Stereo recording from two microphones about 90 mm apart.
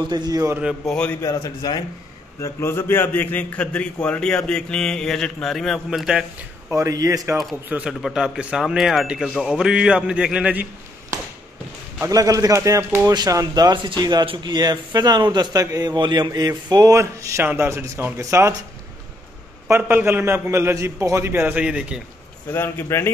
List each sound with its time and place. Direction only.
0.1 s a man's voice: 45° right (ahead or behind)
0.8 s a man's voice: 10° left (ahead or behind)
1.2 s speech: 40° left (ahead or behind)
2.4 s a man's voice: 30° left (ahead or behind); by 6.2 s 5° right (ahead or behind)
6.7 s a man's voice: 35° right (ahead or behind)
7.6 s a man's voice: 15° right (ahead or behind)
8.0 s a man's voice: 5° right (ahead or behind)
12.0 s a man's voice: 40° right (ahead or behind)
13.8 s a man's voice: 50° right (ahead or behind)
14.2 s a man's voice: 65° right (ahead or behind); by 17.0 s 45° right (ahead or behind)
17.0 s a man's voice: 30° right (ahead or behind)
19.7 s a man's voice: 20° right (ahead or behind)
21.5 s a man's voice: 10° right (ahead or behind)
22.5 s a man's voice: 30° left (ahead or behind)